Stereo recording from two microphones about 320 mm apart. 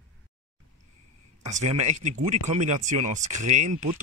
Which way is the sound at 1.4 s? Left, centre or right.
Right.